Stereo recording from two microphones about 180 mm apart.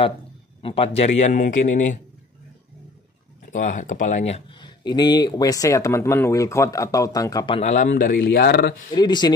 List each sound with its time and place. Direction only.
0.6 s a man's voice: 30° left (ahead or behind); by 2.0 s 45° left (ahead or behind)
3.5 s speech: 45° left (ahead or behind); by 8.7 s 65° left (ahead or behind)
8.9 s speech: 25° left (ahead or behind)